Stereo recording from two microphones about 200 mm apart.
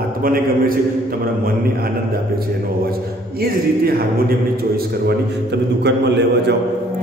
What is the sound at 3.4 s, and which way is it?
Speech, 50° right (ahead or behind).